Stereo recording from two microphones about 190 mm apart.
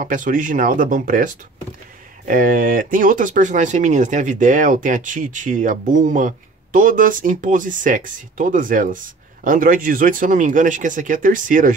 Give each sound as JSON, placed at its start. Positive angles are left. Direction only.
{"t": 0.0, "sound": "speech", "side_deg": -45}